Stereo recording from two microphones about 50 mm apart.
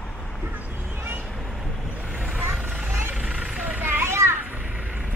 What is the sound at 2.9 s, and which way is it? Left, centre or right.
Vehicle, right.